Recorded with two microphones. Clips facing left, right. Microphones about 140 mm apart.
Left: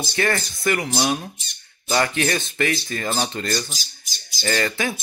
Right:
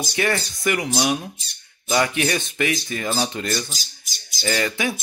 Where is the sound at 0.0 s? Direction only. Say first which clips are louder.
Even; 15° right (ahead or behind).